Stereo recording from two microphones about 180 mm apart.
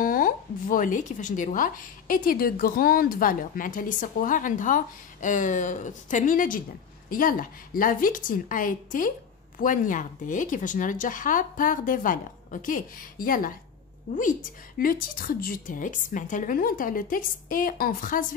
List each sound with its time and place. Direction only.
0.0 s speech: 50° left (ahead or behind)